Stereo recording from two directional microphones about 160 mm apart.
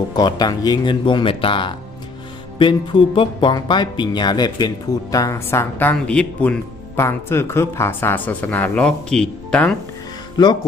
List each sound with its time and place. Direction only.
0.1 s speech: 25° left (ahead or behind); by 9.8 s 5° left (ahead or behind)
10.3 s speech: 25° left (ahead or behind)